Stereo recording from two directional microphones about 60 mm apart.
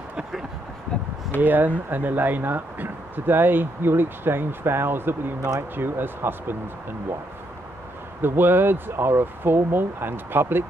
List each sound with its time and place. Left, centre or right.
1.4 s speech: right
8.2 s speech: right